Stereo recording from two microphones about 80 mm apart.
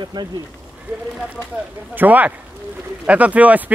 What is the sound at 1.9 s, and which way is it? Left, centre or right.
Speech, right.